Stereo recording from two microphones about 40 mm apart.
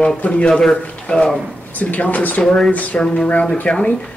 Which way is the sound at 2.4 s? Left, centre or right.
Centre.